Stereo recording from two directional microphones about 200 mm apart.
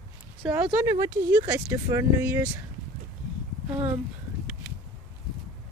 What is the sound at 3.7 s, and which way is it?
Speech, 10° right (ahead or behind).